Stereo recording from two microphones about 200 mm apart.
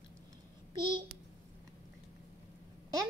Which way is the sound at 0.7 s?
25° right (ahead or behind).